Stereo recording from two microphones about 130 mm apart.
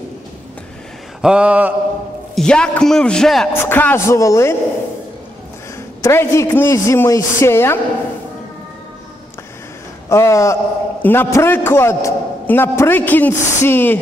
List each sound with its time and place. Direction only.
1.2 s mantra: 10° right (ahead or behind)
2.3 s a man's voice: 5° left (ahead or behind)
3.5 s a man's voice: 15° left (ahead or behind)
6.0 s a man's voice: 20° left (ahead or behind)
10.0 s a man's voice: 20° left (ahead or behind)